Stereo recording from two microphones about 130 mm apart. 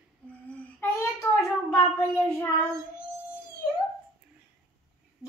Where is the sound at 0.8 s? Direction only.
20° left (ahead or behind).